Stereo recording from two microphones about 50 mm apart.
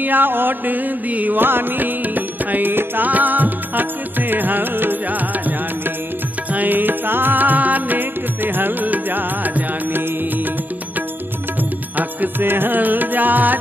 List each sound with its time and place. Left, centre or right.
0.0 s music: right
6.5 s music: right
12.0 s music: right